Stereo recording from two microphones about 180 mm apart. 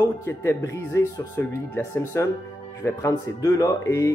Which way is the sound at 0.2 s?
15° left (ahead or behind).